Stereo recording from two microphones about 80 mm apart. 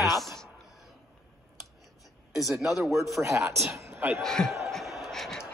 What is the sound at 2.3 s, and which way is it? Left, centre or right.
Speech, centre.